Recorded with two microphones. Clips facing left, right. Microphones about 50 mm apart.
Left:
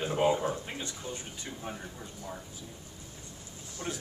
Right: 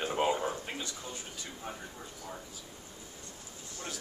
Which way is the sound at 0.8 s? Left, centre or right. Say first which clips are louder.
Left 2 dB; left.